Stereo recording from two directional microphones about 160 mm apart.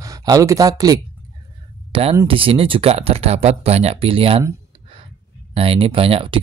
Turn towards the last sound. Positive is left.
turn(degrees=-35)  # may be behind; listen again after turning